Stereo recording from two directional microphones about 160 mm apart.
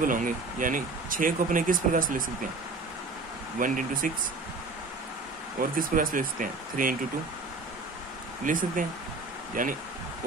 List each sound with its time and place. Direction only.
0.0 s speech: 55° right (ahead or behind)
3.5 s speech: 55° right (ahead or behind)
5.6 s speech: 60° right (ahead or behind)
8.5 s speech: 55° right (ahead or behind)